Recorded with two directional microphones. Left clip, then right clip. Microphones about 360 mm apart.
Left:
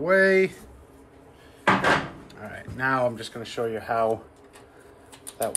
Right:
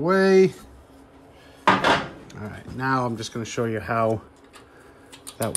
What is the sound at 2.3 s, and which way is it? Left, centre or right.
Speech, centre.